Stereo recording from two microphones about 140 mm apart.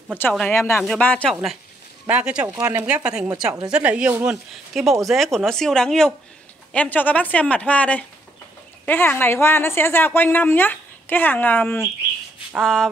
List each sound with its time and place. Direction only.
0.5 s speech: 20° left (ahead or behind)
0.7 s a woman's voice: 5° left (ahead or behind)
2.5 s speech: 20° right (ahead or behind)
2.9 s speech: 5° right (ahead or behind)
5.0 s a woman's voice: centre (ahead or behind)